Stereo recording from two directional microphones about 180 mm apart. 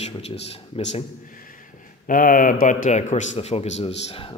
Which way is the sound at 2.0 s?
50° left (ahead or behind).